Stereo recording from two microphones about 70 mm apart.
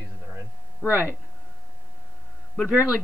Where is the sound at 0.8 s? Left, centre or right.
Right.